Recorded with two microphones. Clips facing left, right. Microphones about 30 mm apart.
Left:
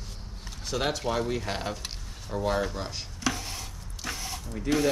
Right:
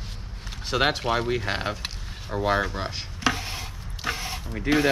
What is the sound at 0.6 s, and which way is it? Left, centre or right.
Speech, right.